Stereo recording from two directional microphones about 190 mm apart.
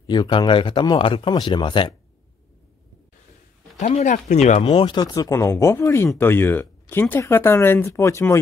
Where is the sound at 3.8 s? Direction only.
35° left (ahead or behind).